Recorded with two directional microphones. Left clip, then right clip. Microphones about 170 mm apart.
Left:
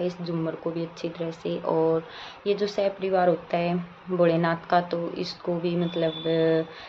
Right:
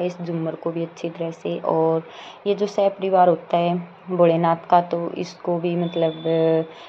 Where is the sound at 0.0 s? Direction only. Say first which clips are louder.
Right 3 dB; 15° right (ahead or behind).